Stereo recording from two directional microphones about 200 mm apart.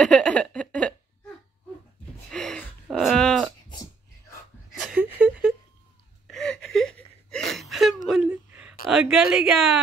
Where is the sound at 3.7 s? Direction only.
15° left (ahead or behind).